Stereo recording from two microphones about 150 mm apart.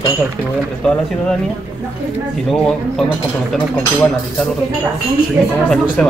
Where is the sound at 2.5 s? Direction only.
5° left (ahead or behind).